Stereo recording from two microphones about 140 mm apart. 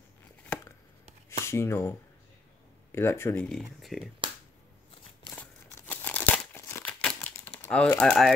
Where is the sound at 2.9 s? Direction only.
20° left (ahead or behind).